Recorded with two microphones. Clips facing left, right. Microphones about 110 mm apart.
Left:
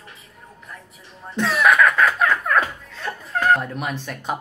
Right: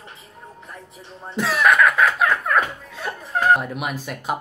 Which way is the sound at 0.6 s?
25° right (ahead or behind).